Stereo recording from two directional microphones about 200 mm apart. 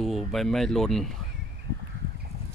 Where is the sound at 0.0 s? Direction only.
Centre (ahead or behind).